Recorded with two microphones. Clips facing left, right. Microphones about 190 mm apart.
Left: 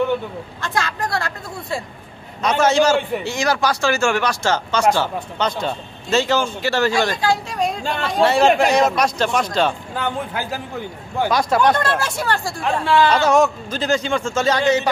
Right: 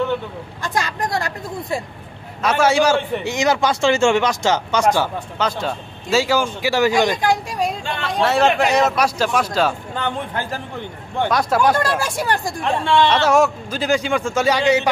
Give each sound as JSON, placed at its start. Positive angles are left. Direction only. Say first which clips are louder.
{"t": 0.6, "sound": "a man's voice", "louder": "right 1 dB", "side_deg": -15}
{"t": 8.0, "sound": "a man's voice", "louder": "left 1 dB", "side_deg": 0}
{"t": 9.9, "sound": "a man's voice", "louder": "even", "side_deg": 5}
{"t": 12.8, "sound": "a man's voice", "louder": "left 1 dB", "side_deg": 5}
{"t": 13.3, "sound": "speech", "louder": "even", "side_deg": -10}